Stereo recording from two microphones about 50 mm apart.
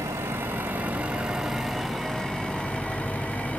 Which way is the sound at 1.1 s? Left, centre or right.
Centre.